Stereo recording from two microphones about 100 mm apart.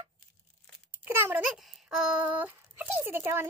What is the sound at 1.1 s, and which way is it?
Speech, 25° right (ahead or behind).